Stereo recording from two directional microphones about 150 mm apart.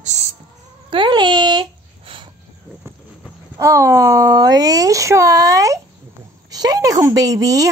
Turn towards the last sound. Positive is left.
turn(degrees=-25)  # may be behind; listen again after turning